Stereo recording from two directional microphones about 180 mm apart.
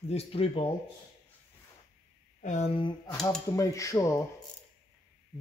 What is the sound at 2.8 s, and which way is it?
Speech, 20° left (ahead or behind).